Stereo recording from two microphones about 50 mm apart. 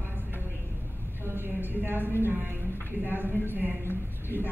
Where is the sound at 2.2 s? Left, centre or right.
Right.